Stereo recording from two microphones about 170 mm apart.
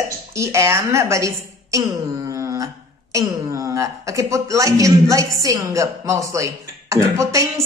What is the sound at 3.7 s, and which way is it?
Speech, 20° right (ahead or behind).